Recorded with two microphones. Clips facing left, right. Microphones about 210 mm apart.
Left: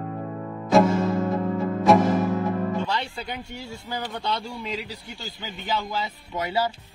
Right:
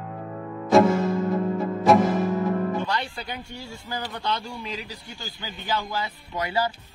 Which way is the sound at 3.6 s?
Centre (ahead or behind).